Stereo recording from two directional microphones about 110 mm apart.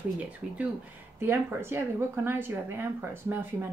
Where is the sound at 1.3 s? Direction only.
20° right (ahead or behind).